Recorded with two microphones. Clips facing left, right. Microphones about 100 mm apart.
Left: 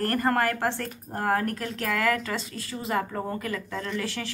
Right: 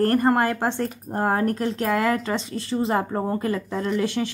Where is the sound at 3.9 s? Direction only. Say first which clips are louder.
Right 9 dB; 20° right (ahead or behind).